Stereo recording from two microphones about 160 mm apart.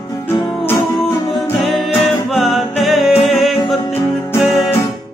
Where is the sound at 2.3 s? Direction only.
Centre (ahead or behind).